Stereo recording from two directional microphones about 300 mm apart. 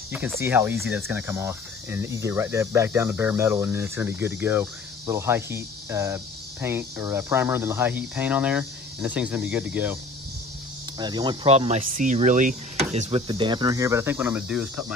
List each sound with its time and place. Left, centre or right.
0.1 s speech: centre
11.0 s speech: centre